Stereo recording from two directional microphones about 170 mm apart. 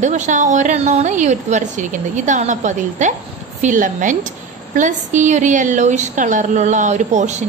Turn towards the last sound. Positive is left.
turn(degrees=-45)  # may be behind; listen again after turning